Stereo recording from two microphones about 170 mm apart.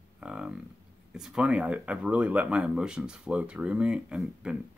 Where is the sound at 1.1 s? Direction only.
5° right (ahead or behind).